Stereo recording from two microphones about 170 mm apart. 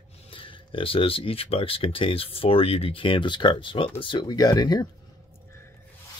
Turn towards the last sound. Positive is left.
turn(degrees=25)  # may be behind; listen again after turning